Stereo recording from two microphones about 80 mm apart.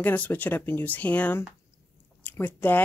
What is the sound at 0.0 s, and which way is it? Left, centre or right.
Speech, left.